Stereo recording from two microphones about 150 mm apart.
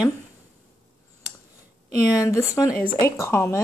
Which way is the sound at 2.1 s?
20° left (ahead or behind).